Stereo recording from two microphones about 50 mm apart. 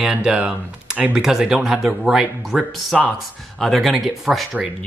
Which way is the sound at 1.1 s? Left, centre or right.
Centre.